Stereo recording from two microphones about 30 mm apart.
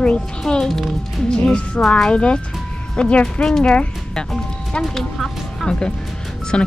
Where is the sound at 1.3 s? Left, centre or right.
Left.